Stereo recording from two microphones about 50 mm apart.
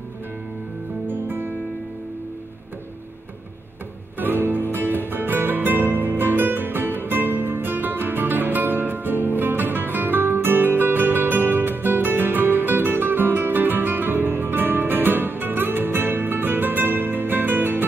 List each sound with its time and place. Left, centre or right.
1.0 s music: right
4.2 s music: right